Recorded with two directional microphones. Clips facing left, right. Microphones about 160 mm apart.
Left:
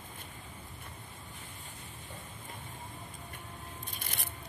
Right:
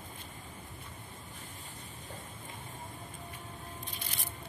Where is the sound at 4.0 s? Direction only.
55° left (ahead or behind).